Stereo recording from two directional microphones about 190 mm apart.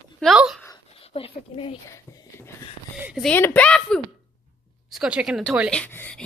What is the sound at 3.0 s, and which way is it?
Speech, 5° right (ahead or behind).